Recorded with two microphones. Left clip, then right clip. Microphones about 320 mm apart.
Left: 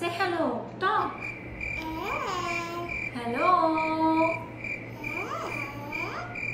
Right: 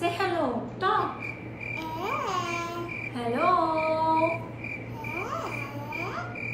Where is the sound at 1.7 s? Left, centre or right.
Centre.